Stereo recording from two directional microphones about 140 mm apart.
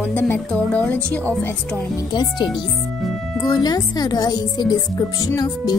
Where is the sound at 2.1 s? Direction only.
30° left (ahead or behind).